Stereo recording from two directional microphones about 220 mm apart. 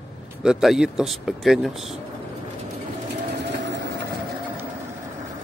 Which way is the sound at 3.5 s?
55° right (ahead or behind).